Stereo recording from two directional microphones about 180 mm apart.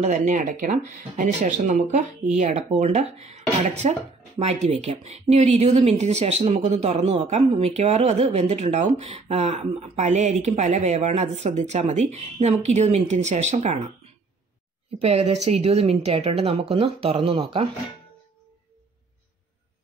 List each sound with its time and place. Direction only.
0.0 s speech: 45° right (ahead or behind)
15.0 s speech: 35° right (ahead or behind)